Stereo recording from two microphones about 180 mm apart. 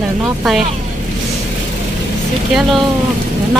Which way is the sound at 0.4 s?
5° right (ahead or behind).